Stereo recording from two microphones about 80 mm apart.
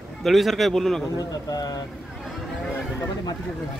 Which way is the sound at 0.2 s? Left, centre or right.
Centre.